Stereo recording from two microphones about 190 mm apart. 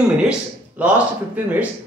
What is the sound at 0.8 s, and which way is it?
Speech, 10° right (ahead or behind).